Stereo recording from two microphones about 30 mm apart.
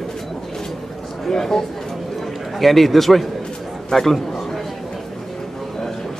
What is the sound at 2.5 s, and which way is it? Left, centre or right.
Speech, centre.